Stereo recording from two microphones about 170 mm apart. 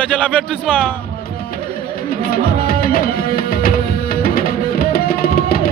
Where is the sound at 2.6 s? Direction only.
60° left (ahead or behind).